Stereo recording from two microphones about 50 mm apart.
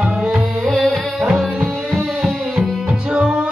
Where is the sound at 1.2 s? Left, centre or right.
Centre.